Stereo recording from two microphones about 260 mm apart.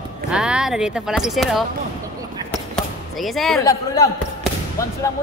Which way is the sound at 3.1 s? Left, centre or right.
Centre.